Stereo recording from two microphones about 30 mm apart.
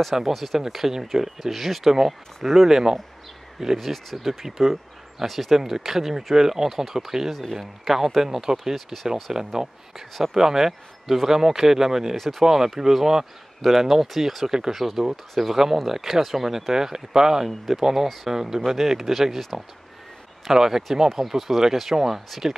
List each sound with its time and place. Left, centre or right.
0.3 s speech: centre
5.2 s speech: centre
5.6 s speech: centre
8.7 s speech: centre
9.1 s speech: centre
12.2 s speech: centre
12.4 s speech: centre
14.8 s speech: centre
16.2 s speech: centre
16.7 s speech: centre
18.3 s speech: centre
20.5 s speech: centre
21.2 s speech: centre